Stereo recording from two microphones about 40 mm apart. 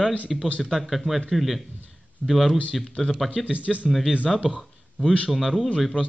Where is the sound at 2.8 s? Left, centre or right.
Centre.